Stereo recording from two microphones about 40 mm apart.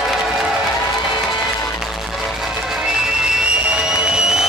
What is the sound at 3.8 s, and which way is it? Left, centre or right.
Music, centre.